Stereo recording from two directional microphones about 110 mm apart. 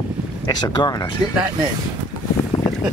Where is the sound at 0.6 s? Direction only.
40° left (ahead or behind).